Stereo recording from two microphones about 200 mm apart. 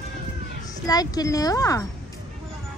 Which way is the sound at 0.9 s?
20° left (ahead or behind).